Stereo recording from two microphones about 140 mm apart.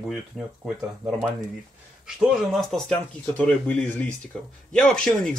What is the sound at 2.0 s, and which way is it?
Speech, centre (ahead or behind).